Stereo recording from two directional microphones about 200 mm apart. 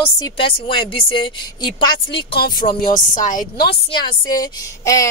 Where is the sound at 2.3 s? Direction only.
50° left (ahead or behind).